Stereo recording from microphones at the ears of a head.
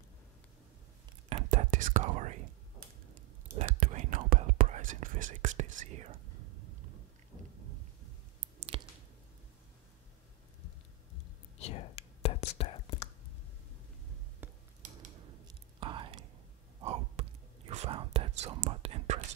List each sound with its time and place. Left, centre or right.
1.3 s whispering: right
7.5 s thunder: right
11.1 s whispering: left
14.8 s whispering: right